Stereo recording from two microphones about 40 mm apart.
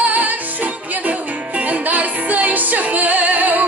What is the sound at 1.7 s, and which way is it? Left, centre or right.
Music, right.